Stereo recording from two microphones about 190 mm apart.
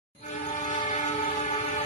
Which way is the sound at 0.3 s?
40° left (ahead or behind).